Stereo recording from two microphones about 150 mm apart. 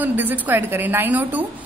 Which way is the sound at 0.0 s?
10° right (ahead or behind).